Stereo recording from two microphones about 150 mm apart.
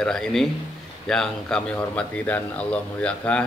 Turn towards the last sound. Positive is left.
turn(degrees=5)  # may be behind; listen again after turning